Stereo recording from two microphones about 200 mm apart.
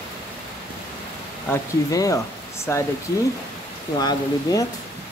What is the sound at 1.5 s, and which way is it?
Speech, 15° left (ahead or behind).